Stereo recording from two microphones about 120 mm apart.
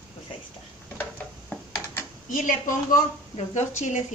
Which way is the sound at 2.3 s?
90° left.